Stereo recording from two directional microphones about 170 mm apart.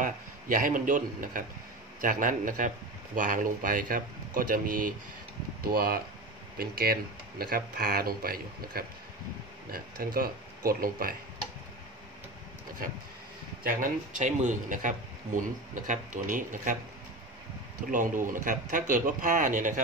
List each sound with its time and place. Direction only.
0.0 s a man's voice: 55° right (ahead or behind)
13.7 s speech: 50° right (ahead or behind)
17.9 s speech: 50° right (ahead or behind)